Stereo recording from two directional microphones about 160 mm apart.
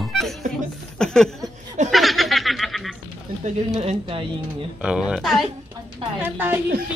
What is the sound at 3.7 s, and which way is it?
Speech, 40° right (ahead or behind).